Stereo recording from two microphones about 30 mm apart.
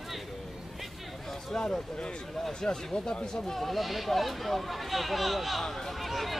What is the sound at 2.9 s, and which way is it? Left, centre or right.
Speech, left.